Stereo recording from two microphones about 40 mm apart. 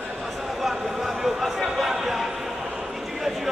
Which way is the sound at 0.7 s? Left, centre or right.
Centre.